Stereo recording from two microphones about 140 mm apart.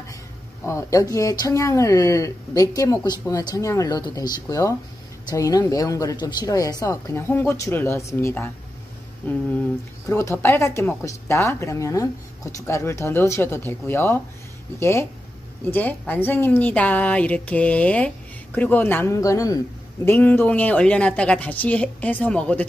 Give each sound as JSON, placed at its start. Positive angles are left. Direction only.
{"t": 0.7, "sound": "a woman's voice", "side_deg": 20}
{"t": 20.1, "sound": "a woman's voice", "side_deg": 15}